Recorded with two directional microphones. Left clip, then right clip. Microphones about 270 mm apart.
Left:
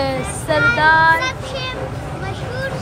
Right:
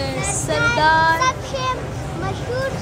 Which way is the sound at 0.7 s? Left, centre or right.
Centre.